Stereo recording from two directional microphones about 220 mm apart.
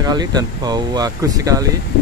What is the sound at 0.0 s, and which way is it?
Speech, 20° right (ahead or behind).